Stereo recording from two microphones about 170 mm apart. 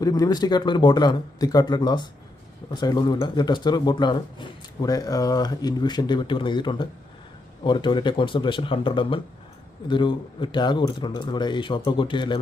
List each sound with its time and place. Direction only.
0.0 s speech: 20° left (ahead or behind)